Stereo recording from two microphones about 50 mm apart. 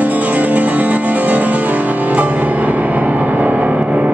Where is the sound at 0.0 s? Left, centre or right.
Right.